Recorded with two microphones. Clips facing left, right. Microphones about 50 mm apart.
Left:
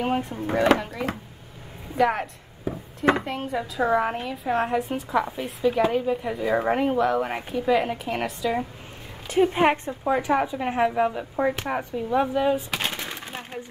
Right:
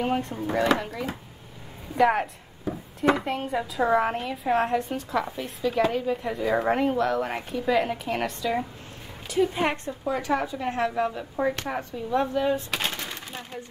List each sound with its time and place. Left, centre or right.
0.0 s a woman's voice: centre
2.0 s speech: centre
2.7 s a sound: centre
3.3 s a woman's voice: centre
9.3 s a woman's voice: left